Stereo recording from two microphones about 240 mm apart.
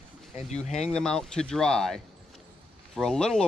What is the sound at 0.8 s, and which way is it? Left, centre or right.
Speech, centre.